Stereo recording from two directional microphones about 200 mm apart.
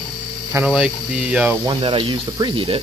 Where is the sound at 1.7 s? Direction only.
25° right (ahead or behind).